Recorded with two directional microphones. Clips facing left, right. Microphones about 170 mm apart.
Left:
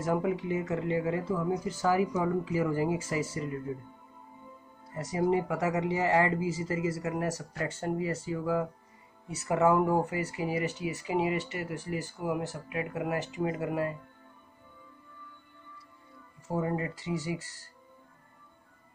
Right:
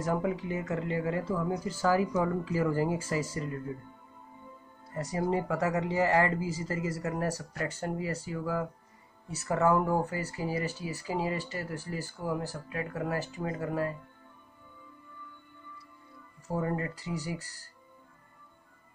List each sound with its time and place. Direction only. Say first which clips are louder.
0.0 s speech: left 1 dB; 20° left (ahead or behind)
4.9 s speech: left 2 dB; 20° left (ahead or behind)
16.4 s speech: left 1 dB; 20° left (ahead or behind)